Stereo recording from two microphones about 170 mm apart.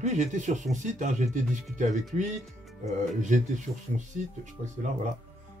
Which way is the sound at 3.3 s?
50° right (ahead or behind).